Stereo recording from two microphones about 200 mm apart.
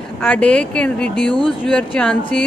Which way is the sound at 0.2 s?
5° left (ahead or behind).